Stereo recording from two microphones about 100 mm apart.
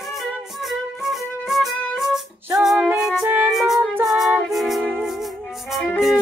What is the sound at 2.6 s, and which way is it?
Female singing, centre (ahead or behind).